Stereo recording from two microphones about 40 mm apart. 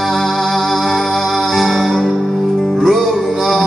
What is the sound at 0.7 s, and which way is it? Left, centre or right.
Music, centre.